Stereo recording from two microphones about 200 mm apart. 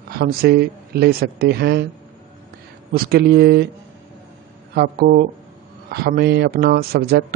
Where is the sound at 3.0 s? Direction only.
50° right (ahead or behind).